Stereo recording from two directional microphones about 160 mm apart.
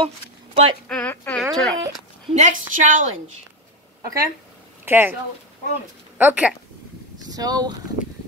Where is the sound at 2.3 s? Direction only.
50° right (ahead or behind).